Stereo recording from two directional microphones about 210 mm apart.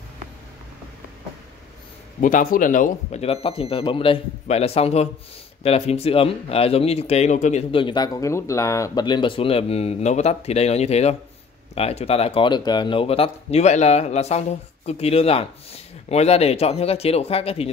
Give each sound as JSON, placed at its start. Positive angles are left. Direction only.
{"t": 2.1, "sound": "speech", "side_deg": 40}
{"t": 7.7, "sound": "speech", "side_deg": 20}